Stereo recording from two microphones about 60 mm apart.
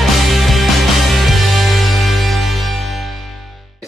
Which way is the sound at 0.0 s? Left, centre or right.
Centre.